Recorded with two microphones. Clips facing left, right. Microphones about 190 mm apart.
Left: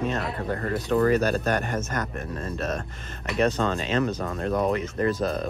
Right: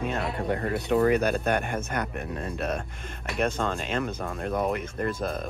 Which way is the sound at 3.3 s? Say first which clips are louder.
Left 4 dB; 5° right (ahead or behind).